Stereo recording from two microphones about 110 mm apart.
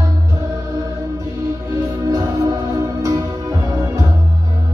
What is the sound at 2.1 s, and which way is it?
Music, 30° right (ahead or behind).